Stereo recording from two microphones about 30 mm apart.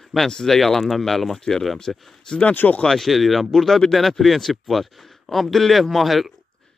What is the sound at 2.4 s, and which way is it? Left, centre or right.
Speech, left.